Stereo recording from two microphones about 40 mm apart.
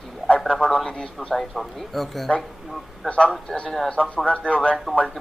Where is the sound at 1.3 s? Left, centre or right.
Centre.